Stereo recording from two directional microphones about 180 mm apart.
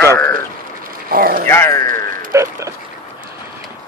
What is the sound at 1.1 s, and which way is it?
Speech, 55° right (ahead or behind).